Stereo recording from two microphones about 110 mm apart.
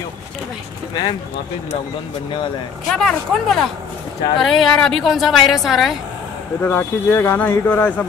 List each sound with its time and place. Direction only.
2.9 s a woman's voice: 5° left (ahead or behind)
6.6 s speech: 20° left (ahead or behind)